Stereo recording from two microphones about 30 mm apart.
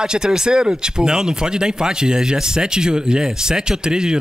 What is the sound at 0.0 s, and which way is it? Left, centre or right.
Speech, right.